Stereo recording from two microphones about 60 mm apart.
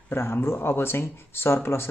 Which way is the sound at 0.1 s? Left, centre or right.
Left.